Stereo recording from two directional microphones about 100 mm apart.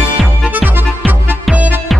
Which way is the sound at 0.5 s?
20° right (ahead or behind).